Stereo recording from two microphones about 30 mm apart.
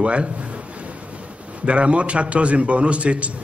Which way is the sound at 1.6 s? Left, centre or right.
Right.